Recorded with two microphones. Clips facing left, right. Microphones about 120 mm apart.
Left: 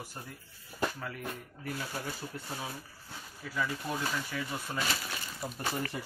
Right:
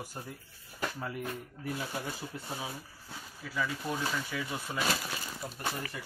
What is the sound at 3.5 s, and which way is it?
Speech, centre (ahead or behind).